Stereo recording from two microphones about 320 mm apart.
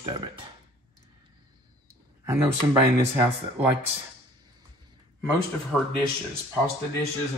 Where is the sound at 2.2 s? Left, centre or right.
Centre.